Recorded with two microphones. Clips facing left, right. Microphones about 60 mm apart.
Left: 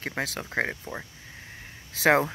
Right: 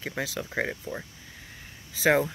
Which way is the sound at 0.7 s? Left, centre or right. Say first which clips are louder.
Right 1 dB; left.